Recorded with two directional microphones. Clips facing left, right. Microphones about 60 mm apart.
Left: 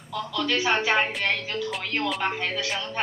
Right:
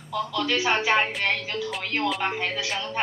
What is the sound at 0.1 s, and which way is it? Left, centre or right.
Speech, centre.